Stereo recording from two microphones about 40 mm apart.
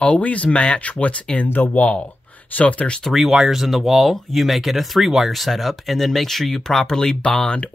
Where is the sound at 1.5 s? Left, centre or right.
Left.